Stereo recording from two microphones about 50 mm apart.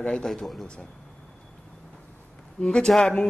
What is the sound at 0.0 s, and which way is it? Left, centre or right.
Speech, centre.